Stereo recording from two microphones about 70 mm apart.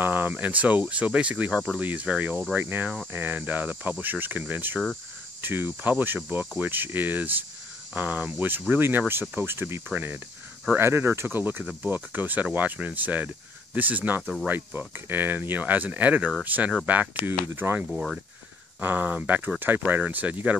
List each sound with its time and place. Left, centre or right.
0.0 s speech: right
1.5 s speech: centre
1.8 s speech: right
17.9 s speech: centre
18.8 s speech: right